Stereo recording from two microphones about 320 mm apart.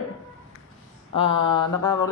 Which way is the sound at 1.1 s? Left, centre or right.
Centre.